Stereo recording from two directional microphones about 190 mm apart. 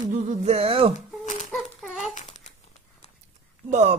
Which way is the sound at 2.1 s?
40° left (ahead or behind).